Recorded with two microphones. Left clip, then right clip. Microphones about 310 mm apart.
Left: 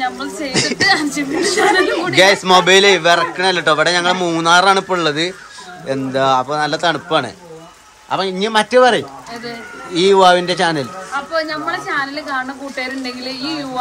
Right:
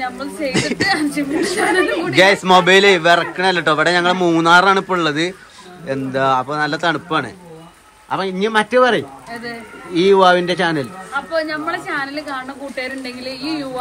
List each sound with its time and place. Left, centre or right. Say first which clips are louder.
0.0 s a woman's voice: left 1 dB; centre